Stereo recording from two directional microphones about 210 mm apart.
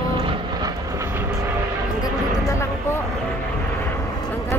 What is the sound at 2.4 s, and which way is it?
Vehicle, 15° left (ahead or behind).